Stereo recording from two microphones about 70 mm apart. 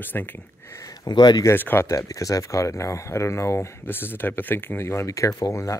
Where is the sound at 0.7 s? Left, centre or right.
Left.